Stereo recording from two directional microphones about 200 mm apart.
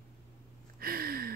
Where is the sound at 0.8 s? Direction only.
50° right (ahead or behind).